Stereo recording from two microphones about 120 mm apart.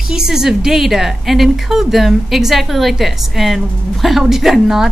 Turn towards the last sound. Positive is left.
turn(degrees=0)  # may be behind; listen again after turning